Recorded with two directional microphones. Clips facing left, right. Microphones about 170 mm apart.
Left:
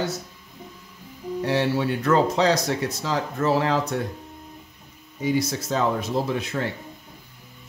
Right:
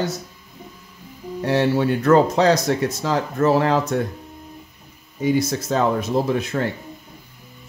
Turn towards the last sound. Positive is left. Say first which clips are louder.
# right 4 dB
turn(degrees=-50)  # may be behind; listen again after turning